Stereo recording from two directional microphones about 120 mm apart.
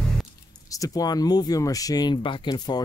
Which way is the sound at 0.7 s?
30° left (ahead or behind).